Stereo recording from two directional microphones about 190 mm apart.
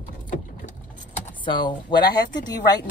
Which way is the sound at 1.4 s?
25° left (ahead or behind).